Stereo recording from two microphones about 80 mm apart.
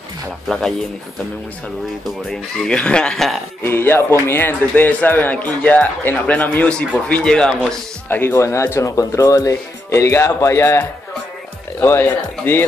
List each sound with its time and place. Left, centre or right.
0.5 s speech: centre
2.3 s speech: centre
3.6 s a man's voice: left; by 7.5 s centre
8.1 s speech: left
11.8 s a man's voice: left